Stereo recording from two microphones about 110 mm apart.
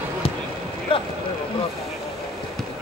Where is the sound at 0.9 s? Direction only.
55° left (ahead or behind).